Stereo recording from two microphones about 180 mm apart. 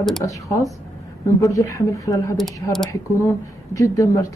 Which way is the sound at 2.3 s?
Centre (ahead or behind).